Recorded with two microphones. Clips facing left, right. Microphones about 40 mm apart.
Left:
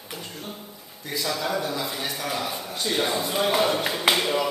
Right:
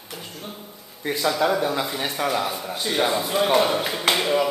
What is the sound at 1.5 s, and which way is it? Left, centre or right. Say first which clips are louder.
A man's voice: right 4 dB; centre.